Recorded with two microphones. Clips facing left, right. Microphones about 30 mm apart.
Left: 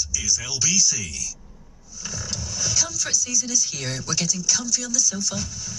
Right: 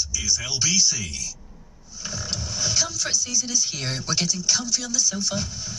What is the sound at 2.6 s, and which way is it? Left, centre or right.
Speech, right.